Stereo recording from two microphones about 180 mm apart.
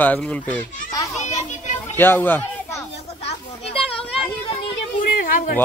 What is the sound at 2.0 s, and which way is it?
Speech, 10° left (ahead or behind).